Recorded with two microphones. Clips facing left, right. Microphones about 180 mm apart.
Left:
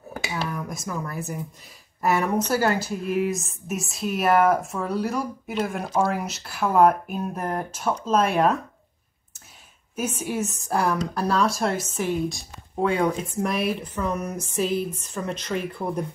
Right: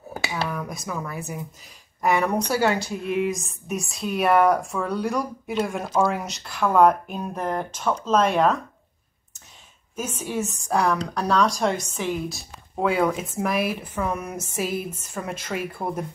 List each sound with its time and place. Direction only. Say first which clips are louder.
0.7 s a woman's voice: even; centre (ahead or behind)
9.9 s a woman's voice: left 1 dB; 10° left (ahead or behind)
13.1 s speech: left 1 dB; 90° right
13.5 s a woman's voice: right 2 dB; 5° right (ahead or behind)